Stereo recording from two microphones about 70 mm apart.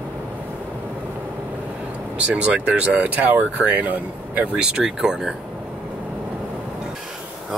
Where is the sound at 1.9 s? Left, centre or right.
Centre.